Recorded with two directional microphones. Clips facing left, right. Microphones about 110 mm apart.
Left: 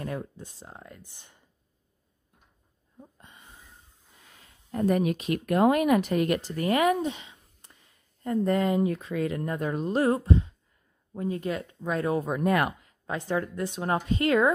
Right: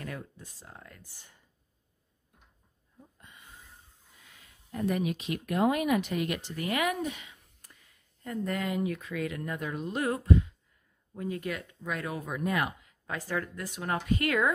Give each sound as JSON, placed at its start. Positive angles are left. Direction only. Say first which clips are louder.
{"t": 0.0, "sound": "speech", "louder": "left 6 dB", "side_deg": 30}
{"t": 3.2, "sound": "a sound", "louder": "left 2 dB", "side_deg": 30}
{"t": 4.2, "sound": "speech", "louder": "left 3 dB", "side_deg": 35}
{"t": 12.4, "sound": "speech", "louder": "left 3 dB", "side_deg": 55}
{"t": 13.0, "sound": "speech", "louder": "left 5 dB", "side_deg": 25}